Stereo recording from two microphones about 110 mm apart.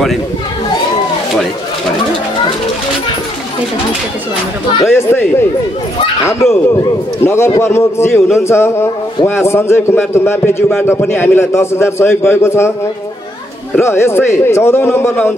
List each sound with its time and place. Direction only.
4.8 s a man's voice: 20° left (ahead or behind)
13.7 s a man's voice: 25° left (ahead or behind)